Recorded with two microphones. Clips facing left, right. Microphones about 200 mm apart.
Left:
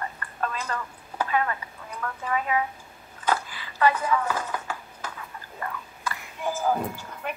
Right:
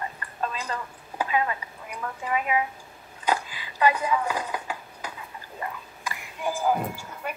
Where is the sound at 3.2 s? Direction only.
15° right (ahead or behind).